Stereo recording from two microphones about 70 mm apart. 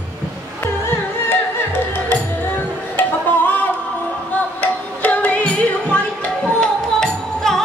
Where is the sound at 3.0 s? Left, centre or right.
Left.